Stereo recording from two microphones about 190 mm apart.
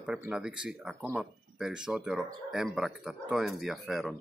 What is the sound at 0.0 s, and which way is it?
Speech, 5° right (ahead or behind).